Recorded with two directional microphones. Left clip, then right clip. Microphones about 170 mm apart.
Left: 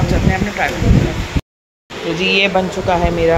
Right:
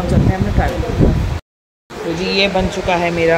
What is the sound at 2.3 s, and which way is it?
Speech, 5° right (ahead or behind).